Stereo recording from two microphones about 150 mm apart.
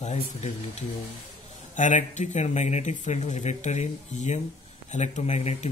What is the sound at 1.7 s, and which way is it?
Speech, 55° left (ahead or behind).